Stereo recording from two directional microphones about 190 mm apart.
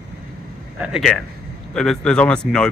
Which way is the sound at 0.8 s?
Centre (ahead or behind).